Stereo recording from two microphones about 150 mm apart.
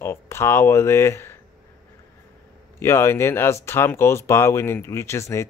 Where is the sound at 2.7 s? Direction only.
15° left (ahead or behind).